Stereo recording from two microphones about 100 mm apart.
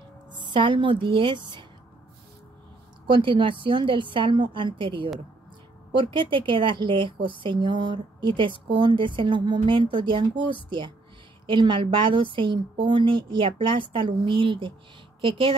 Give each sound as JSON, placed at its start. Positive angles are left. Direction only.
{"t": 0.3, "sound": "speech", "side_deg": -50}
{"t": 3.1, "sound": "a woman's voice", "side_deg": -55}